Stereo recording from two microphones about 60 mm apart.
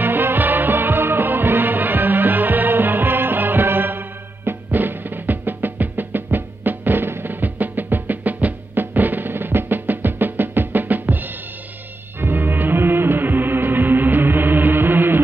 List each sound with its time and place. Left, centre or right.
0.0 s music: right